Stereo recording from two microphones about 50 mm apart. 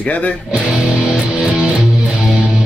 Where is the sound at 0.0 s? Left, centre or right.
Left.